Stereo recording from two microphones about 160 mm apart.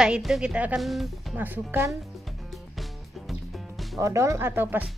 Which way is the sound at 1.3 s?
10° right (ahead or behind).